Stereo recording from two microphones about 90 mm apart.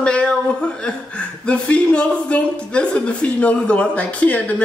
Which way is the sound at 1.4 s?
15° left (ahead or behind).